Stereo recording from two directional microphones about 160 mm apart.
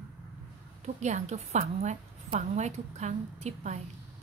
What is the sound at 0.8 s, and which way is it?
A woman's voice, 45° right (ahead or behind).